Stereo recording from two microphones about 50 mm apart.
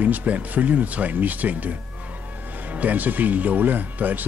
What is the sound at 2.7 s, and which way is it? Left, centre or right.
Speech, right.